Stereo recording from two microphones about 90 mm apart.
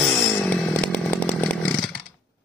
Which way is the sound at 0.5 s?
15° left (ahead or behind).